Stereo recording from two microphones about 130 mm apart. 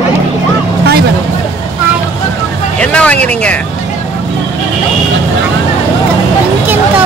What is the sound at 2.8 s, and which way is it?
Speech, 10° left (ahead or behind).